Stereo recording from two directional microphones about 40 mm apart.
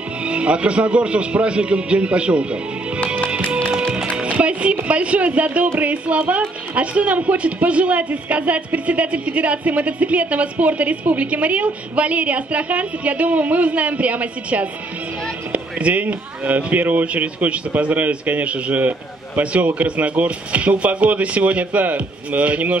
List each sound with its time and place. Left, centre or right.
0.2 s a man's voice: right
4.2 s music: right
4.8 s speech: right